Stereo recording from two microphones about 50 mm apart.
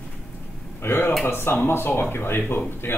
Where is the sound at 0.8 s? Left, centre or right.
Left.